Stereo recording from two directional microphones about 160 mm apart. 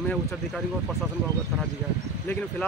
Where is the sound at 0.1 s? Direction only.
Centre (ahead or behind).